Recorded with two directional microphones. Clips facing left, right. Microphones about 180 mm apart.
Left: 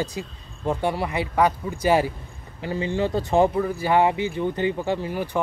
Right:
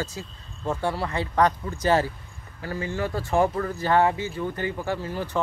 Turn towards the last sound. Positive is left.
turn(degrees=15)  # may be behind; listen again after turning